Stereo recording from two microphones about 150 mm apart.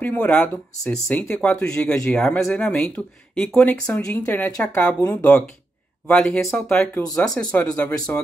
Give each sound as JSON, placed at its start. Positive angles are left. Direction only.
{"t": 0.0, "sound": "speech", "side_deg": 10}